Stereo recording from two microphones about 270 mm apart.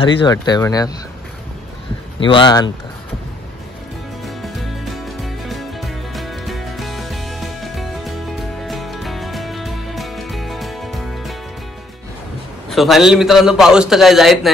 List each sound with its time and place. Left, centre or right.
0.0 s speech: centre
2.1 s speech: centre
4.2 s music: centre
12.6 s a man's voice: centre